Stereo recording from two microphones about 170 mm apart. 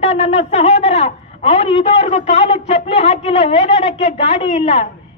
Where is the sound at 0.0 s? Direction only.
40° left (ahead or behind).